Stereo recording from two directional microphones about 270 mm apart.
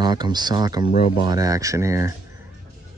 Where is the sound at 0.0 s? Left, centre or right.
Centre.